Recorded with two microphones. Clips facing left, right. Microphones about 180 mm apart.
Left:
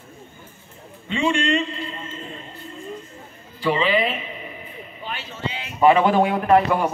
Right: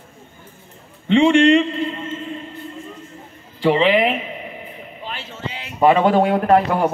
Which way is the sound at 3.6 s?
75° right (ahead or behind).